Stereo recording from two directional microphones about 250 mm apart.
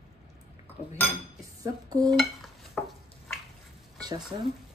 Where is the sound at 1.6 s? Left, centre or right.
Centre.